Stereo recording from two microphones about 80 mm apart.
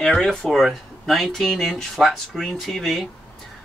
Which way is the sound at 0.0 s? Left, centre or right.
Centre.